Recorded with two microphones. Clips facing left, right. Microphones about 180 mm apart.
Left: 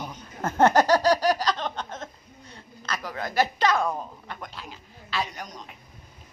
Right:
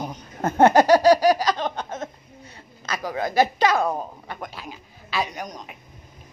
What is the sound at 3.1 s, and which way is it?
Speech, 15° right (ahead or behind).